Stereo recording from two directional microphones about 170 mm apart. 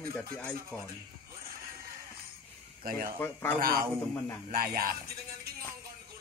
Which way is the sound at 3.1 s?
15° left (ahead or behind).